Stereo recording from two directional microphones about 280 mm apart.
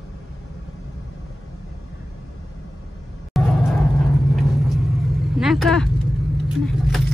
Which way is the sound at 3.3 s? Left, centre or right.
Centre.